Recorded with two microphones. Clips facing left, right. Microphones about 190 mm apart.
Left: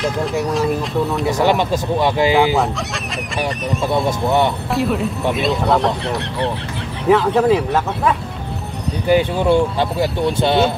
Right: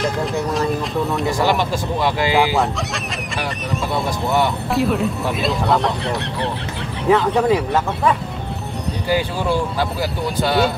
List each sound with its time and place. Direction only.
0.0 s speech: centre (ahead or behind)
1.4 s speech: 20° left (ahead or behind)
2.5 s speech: centre (ahead or behind)
4.0 s speech: 20° left (ahead or behind)
4.7 s speech: centre (ahead or behind)
9.0 s speech: 20° left (ahead or behind)